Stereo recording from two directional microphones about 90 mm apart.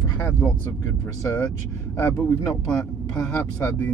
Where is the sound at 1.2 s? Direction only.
30° left (ahead or behind).